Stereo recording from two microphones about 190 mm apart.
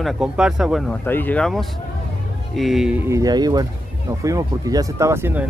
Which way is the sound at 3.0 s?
15° right (ahead or behind).